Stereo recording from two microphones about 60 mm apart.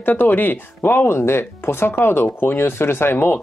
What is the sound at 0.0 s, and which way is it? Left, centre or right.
Speech, left.